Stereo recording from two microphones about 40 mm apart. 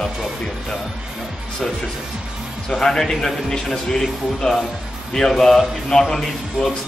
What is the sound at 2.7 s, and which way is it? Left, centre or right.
A man's voice, centre.